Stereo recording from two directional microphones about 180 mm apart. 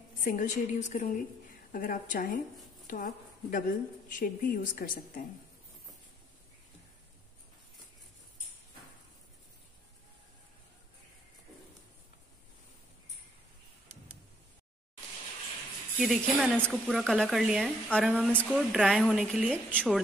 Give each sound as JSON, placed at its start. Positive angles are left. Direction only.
{"t": 0.2, "sound": "a woman's voice", "side_deg": 50}
{"t": 16.0, "sound": "speech", "side_deg": 0}